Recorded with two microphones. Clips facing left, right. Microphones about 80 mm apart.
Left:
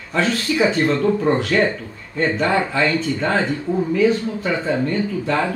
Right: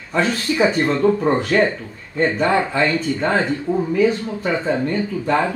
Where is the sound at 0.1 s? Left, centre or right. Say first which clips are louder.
Even; centre.